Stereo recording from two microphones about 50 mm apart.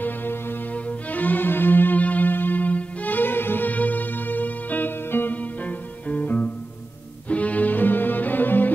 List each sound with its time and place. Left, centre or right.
0.0 s music: left